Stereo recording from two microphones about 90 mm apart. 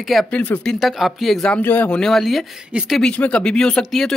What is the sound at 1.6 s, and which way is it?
Speech, 20° left (ahead or behind).